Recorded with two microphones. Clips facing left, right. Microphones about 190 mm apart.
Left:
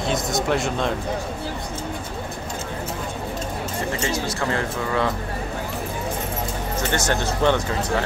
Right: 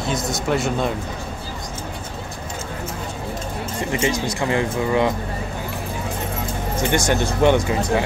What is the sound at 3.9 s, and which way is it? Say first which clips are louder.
Speech: right 7 dB; 15° right (ahead or behind).